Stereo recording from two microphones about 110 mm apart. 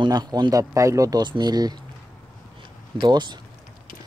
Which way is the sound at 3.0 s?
40° right (ahead or behind).